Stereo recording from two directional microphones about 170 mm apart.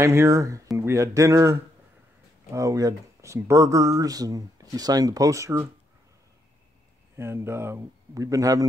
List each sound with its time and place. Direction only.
0.0 s a man's voice: 15° right (ahead or behind)
7.2 s a man's voice: 15° right (ahead or behind)